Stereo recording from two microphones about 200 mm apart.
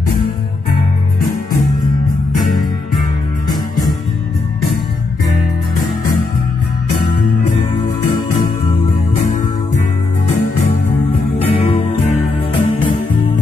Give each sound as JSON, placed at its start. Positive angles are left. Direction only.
{"t": 11.7, "sound": "music", "side_deg": 25}